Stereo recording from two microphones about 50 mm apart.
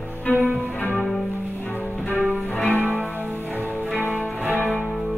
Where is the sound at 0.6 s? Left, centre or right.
Left.